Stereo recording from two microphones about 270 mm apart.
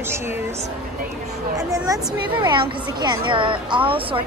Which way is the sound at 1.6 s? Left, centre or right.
Centre.